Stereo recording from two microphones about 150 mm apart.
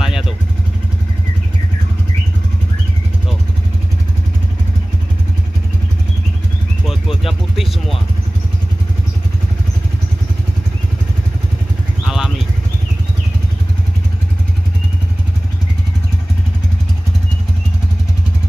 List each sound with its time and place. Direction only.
0.0 s vehicle: 5° right (ahead or behind)
6.9 s a sound: centre (ahead or behind)
12.1 s vehicle: 5° right (ahead or behind)